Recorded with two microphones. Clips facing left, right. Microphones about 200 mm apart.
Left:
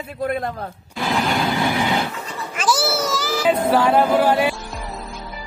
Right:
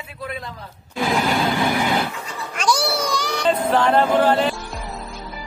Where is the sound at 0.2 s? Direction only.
50° left (ahead or behind).